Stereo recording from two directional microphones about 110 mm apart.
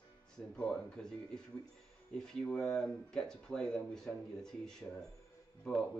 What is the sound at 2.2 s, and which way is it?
Speech, 5° left (ahead or behind).